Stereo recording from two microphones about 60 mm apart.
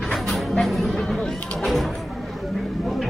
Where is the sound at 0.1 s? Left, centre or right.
Centre.